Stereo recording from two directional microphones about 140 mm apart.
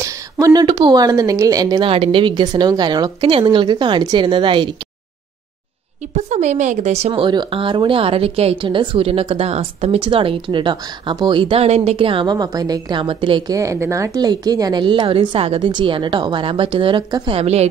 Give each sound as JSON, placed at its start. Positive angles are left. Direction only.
{"t": 0.0, "sound": "speech", "side_deg": -25}
{"t": 6.1, "sound": "speech", "side_deg": -55}
{"t": 13.6, "sound": "speech", "side_deg": -20}
{"t": 17.4, "sound": "a woman's voice", "side_deg": -50}